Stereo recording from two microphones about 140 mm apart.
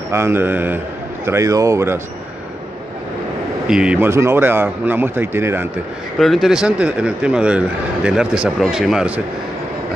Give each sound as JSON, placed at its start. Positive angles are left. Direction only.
{"t": 0.1, "sound": "a man's voice", "side_deg": -15}
{"t": 3.6, "sound": "speech", "side_deg": -5}
{"t": 4.1, "sound": "speech", "side_deg": -20}
{"t": 6.1, "sound": "speech", "side_deg": 0}